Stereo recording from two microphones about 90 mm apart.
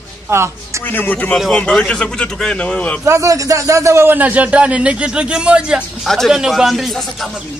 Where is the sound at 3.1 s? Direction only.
35° right (ahead or behind); by 5.8 s 10° right (ahead or behind).